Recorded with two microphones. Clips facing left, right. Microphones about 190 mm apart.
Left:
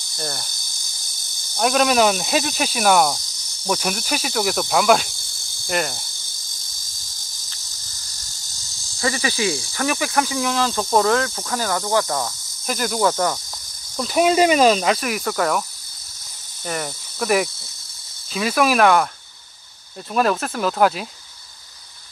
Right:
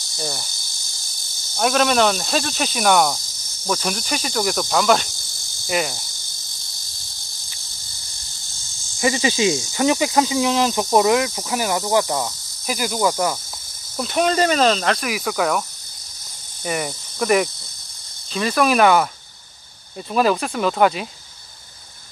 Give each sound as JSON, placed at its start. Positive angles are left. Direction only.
{"t": 0.2, "sound": "speech", "side_deg": -5}
{"t": 1.6, "sound": "speech", "side_deg": 0}
{"t": 9.0, "sound": "speech", "side_deg": -20}
{"t": 9.7, "sound": "cricket", "side_deg": -20}
{"t": 13.9, "sound": "speech", "side_deg": 5}
{"t": 16.6, "sound": "speech", "side_deg": -5}
{"t": 20.1, "sound": "speech", "side_deg": 0}